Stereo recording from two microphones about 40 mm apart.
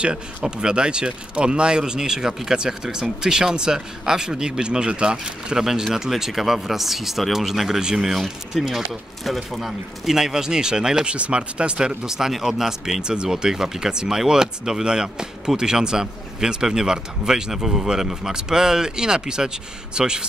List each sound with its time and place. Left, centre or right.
0.0 s speech: right
5.6 s speech: centre
11.1 s speech: right